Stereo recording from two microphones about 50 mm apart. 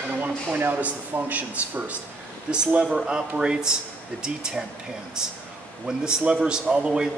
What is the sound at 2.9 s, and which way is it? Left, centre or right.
Speech, centre.